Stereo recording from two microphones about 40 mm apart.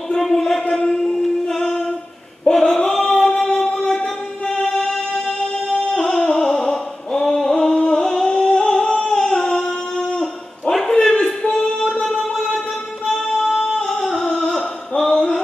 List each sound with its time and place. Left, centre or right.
0.2 s a sound: centre
0.7 s a sound: centre
1.0 s singing: centre
3.5 s music: centre
8.5 s humming: centre
10.7 s bow-wow: centre
13.4 s singing: centre
13.8 s music: centre
14.3 s a sound: centre